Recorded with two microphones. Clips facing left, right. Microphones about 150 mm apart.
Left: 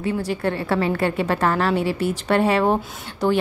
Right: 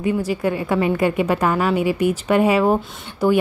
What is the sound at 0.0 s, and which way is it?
A woman's voice, 10° right (ahead or behind).